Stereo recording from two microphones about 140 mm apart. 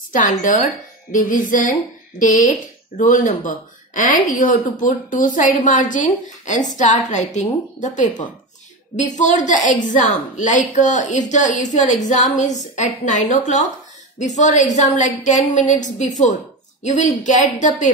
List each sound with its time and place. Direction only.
0.1 s speech: 70° left (ahead or behind)
7.1 s a woman's voice: 60° left (ahead or behind)